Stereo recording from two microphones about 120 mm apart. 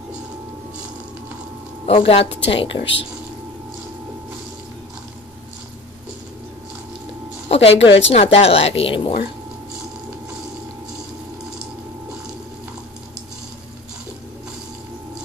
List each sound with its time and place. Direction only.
1.9 s a woman's voice: 50° left (ahead or behind)
7.4 s speech: 55° left (ahead or behind)